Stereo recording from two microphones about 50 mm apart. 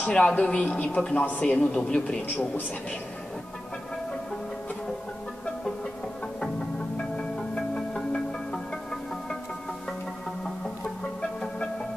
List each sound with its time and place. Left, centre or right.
0.0 s speech: left
7.0 s music: centre